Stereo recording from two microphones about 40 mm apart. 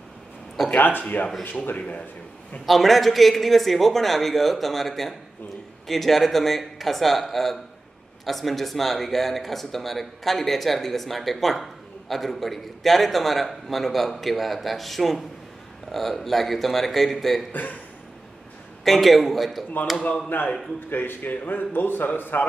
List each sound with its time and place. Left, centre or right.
0.7 s speech: left
1.8 s speech: left
2.6 s speech: centre
17.5 s speech: left
18.9 s speech: centre
20.3 s a man's voice: left